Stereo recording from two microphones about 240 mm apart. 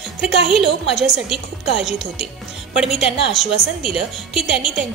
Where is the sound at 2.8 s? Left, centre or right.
Centre.